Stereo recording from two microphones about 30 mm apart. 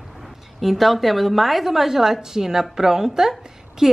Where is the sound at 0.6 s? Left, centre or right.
Centre.